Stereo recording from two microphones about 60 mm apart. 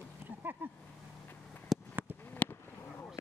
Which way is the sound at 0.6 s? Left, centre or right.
Right.